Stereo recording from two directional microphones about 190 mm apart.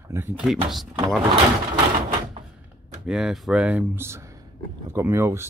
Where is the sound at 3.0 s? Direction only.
Centre (ahead or behind).